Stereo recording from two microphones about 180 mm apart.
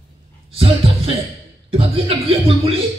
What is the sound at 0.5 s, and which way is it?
Speech, 30° right (ahead or behind).